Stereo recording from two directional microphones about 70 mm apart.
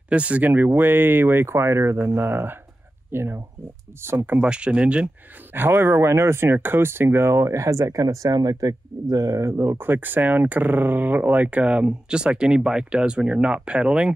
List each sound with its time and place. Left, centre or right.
0.1 s speech: centre; by 4.4 s right
4.4 s speech: centre
5.0 s speech: right
9.1 s speech: right
9.8 s speech: right